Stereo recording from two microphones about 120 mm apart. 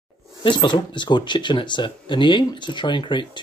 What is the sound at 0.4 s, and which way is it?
Speech, 40° left (ahead or behind).